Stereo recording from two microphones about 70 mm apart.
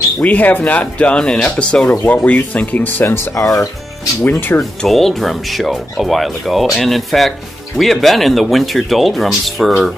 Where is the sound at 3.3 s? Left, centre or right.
Left.